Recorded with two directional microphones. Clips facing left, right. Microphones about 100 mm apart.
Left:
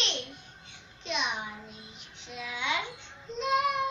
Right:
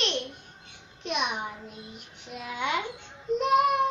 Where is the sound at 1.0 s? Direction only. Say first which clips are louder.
Right 3 dB; 55° right (ahead or behind).